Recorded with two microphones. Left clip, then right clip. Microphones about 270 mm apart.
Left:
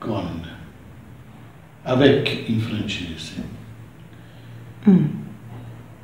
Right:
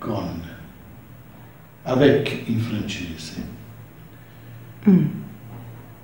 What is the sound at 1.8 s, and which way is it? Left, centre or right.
A man's voice, centre.